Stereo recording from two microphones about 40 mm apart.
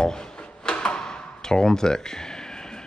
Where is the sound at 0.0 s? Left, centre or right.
Centre.